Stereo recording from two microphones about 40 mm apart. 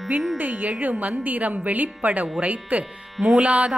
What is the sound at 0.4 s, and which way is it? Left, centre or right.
A woman's voice, right.